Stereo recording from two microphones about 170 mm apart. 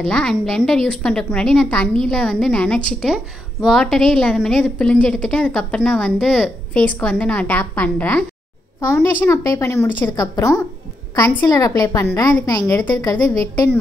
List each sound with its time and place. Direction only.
0.0 s a woman's voice: 5° left (ahead or behind)